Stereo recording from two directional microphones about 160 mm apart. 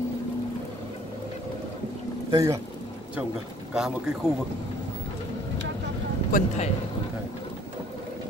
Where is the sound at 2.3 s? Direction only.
25° right (ahead or behind).